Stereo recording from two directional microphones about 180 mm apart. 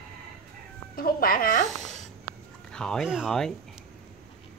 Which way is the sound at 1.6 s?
Centre (ahead or behind).